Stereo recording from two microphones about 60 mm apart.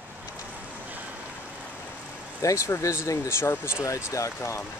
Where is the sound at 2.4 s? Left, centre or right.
Left.